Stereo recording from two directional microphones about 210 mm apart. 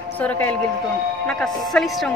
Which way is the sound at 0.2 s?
5° left (ahead or behind).